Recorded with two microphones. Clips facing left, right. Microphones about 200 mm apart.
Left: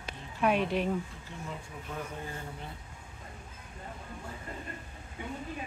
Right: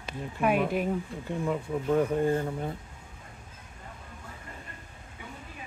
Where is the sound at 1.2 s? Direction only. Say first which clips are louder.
Right 12 dB; 60° right (ahead or behind).